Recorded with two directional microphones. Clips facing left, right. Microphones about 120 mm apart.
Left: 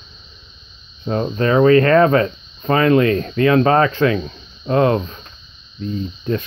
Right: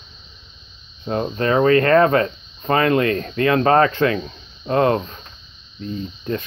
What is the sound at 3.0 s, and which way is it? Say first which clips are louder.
Speech: left 3 dB; 30° left (ahead or behind).